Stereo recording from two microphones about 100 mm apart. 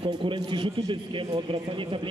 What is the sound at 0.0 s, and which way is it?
A man's voice, 60° right (ahead or behind).